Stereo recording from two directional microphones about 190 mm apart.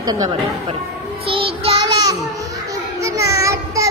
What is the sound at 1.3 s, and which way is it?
Child singing, 30° right (ahead or behind).